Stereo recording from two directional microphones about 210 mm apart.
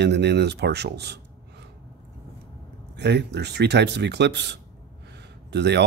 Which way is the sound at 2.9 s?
55° right (ahead or behind).